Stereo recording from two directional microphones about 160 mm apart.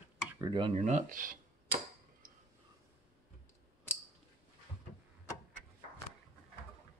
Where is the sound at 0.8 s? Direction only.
50° right (ahead or behind).